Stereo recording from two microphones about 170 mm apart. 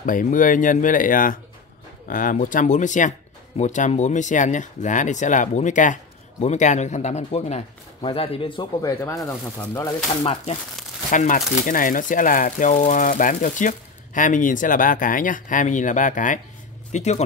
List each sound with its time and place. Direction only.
0.0 s a man's voice: 50° left (ahead or behind); by 8.9 s 30° left (ahead or behind)
9.0 s speech: 20° left (ahead or behind)
10.2 s a man's voice: 35° left (ahead or behind)
11.1 s a man's voice: 50° left (ahead or behind)